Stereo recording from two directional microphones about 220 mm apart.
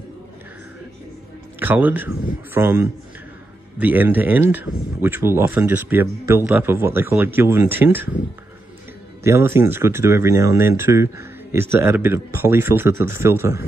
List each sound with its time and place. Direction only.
1.6 s speech: 10° right (ahead or behind)
9.2 s speech: 10° right (ahead or behind)